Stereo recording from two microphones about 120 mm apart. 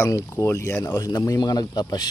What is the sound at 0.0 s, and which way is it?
Speech, 25° left (ahead or behind).